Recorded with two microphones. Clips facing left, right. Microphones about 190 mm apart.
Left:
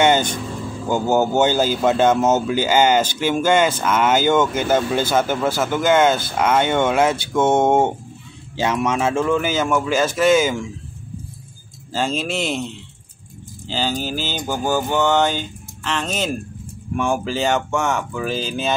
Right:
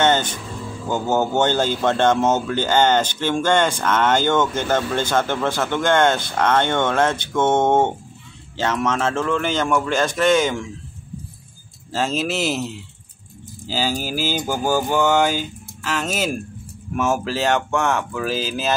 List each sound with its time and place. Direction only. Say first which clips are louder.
0.0 s vehicle: left 2 dB; 10° left (ahead or behind)
0.8 s a man's voice: left 3 dB; 10° left (ahead or behind)
11.9 s speech: even; centre (ahead or behind)
13.7 s a sound: even; 5° right (ahead or behind)
16.9 s speech: even; 5° right (ahead or behind)